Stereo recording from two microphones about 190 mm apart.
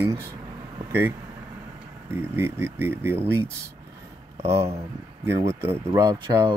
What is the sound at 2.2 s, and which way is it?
Speech, 10° right (ahead or behind).